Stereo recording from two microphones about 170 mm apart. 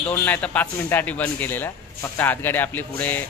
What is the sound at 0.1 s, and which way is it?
Speech, 10° left (ahead or behind).